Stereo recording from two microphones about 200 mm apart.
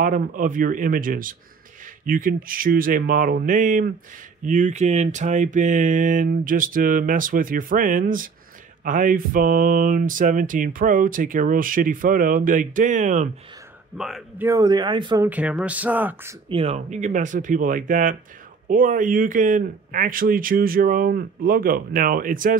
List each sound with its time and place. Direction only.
0.0 s mantra: 40° right (ahead or behind)
4.5 s speech: 40° right (ahead or behind)
8.8 s mantra: 40° right (ahead or behind)
13.9 s a man's voice: centre (ahead or behind)
14.5 s speech: 20° right (ahead or behind)
15.2 s speech: 5° right (ahead or behind)
16.4 s speech: 30° right (ahead or behind)
18.7 s mantra: 40° right (ahead or behind)